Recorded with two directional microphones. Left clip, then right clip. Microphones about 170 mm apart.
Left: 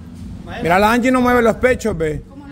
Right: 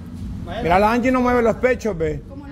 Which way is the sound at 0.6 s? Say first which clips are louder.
Left 3 dB; 25° left (ahead or behind).